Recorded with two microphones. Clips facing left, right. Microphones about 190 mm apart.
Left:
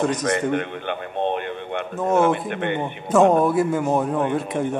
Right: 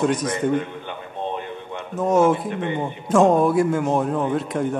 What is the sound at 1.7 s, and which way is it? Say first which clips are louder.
Speech: right 1 dB; 65° left (ahead or behind).